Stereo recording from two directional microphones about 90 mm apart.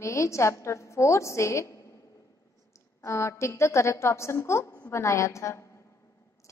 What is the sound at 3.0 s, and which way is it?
A woman's voice, 30° left (ahead or behind).